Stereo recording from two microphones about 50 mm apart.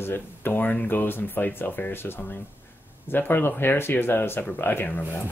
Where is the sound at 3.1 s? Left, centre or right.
Left.